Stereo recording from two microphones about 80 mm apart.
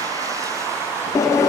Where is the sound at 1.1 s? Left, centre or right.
Left.